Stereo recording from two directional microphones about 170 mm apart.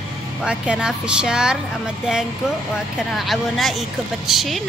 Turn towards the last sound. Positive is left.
turn(degrees=0)  # may be behind; listen again after turning